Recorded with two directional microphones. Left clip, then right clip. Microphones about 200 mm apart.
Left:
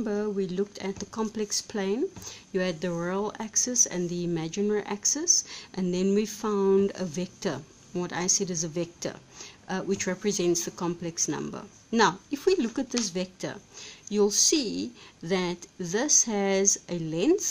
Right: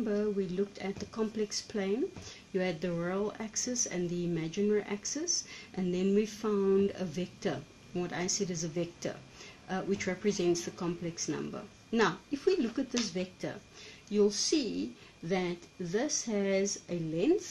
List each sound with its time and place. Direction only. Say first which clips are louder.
0.0 s speech: left 3 dB; 40° left (ahead or behind)